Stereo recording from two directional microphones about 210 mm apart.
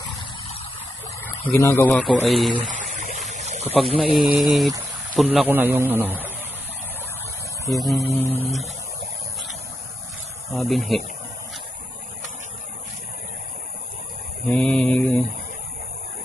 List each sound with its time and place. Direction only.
1.2 s speech: 10° left (ahead or behind)
2.0 s speech: centre (ahead or behind)
3.3 s a sound: 35° right (ahead or behind)
4.0 s a man's voice: centre (ahead or behind)
7.7 s speech: centre (ahead or behind)
10.5 s speech: centre (ahead or behind)
14.5 s speech: 5° left (ahead or behind)